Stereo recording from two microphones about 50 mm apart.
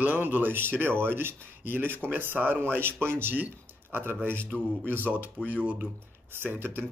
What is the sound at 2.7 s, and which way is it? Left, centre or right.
Speech, right.